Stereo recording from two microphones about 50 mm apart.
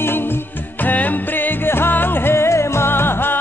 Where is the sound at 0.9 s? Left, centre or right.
Left.